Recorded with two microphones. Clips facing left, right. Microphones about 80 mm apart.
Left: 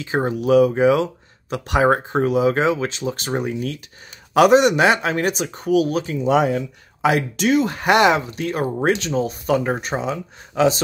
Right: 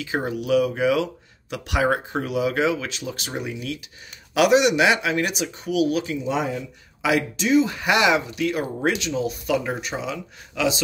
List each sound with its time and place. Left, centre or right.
0.0 s speech: left
6.2 s speech: left
7.0 s speech: left
7.3 s speech: left